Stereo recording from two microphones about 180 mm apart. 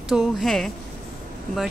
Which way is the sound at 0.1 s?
Centre (ahead or behind).